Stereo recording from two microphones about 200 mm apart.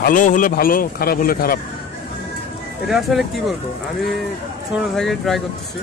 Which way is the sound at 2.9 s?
Centre (ahead or behind).